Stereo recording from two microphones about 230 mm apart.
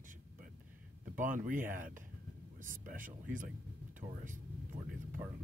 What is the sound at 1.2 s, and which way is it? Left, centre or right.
Speech, right.